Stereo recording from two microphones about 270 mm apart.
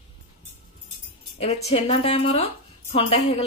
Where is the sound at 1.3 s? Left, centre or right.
Left.